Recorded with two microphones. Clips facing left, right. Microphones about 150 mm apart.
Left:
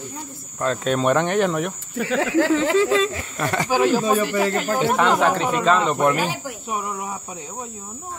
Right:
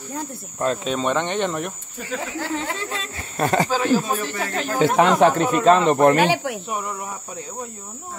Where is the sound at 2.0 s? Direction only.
85° left.